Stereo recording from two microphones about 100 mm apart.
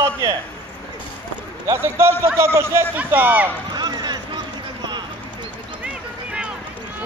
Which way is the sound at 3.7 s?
45° right (ahead or behind).